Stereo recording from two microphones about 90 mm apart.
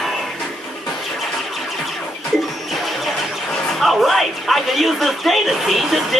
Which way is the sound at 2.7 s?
Centre (ahead or behind).